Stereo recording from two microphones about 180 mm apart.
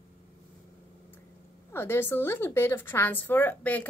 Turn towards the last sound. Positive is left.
turn(degrees=10)  # may be behind; listen again after turning